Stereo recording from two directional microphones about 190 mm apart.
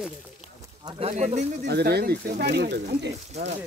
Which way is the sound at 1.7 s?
60° right (ahead or behind).